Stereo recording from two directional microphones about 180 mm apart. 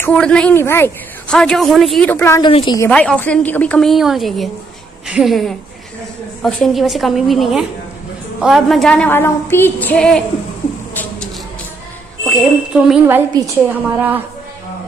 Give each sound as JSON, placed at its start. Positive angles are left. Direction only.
{"t": 0.0, "sound": "a woman's voice", "side_deg": 5}
{"t": 2.4, "sound": "a woman's voice", "side_deg": 25}
{"t": 2.9, "sound": "a woman's voice", "side_deg": 5}
{"t": 12.3, "sound": "a woman's voice", "side_deg": 0}
{"t": 13.4, "sound": "a woman's voice", "side_deg": -20}
{"t": 13.7, "sound": "a woman's voice", "side_deg": -10}